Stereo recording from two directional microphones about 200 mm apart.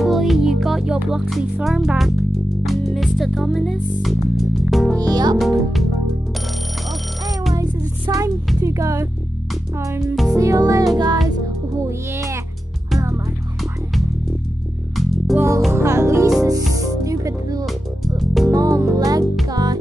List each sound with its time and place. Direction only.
0.0 s music: centre (ahead or behind)
4.9 s music: 20° right (ahead or behind)
7.5 s music: 15° right (ahead or behind)
15.0 s music: centre (ahead or behind)
15.7 s music: 15° right (ahead or behind)
17.6 s music: centre (ahead or behind)
18.5 s music: 15° right (ahead or behind)